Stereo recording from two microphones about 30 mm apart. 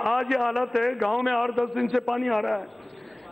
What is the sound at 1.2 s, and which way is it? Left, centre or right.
Speech, left.